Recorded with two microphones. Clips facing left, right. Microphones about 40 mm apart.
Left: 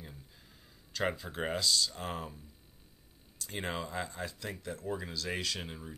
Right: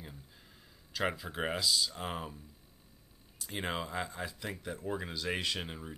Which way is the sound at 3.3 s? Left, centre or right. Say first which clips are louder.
Right 1 dB; centre.